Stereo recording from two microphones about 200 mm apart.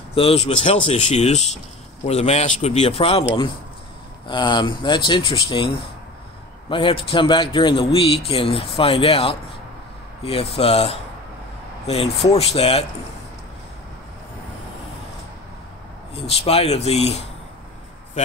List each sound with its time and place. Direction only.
0.1 s speech: 30° left (ahead or behind)
6.7 s speech: 25° left (ahead or behind)
16.3 s speech: 30° left (ahead or behind)